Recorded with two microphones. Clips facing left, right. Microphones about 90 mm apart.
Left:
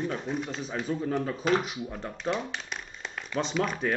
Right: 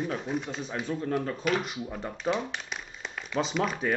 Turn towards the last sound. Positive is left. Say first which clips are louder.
# even
turn(degrees=0)  # may be behind; listen again after turning